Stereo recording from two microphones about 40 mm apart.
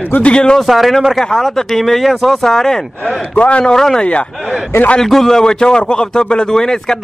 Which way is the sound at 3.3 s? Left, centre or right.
Left.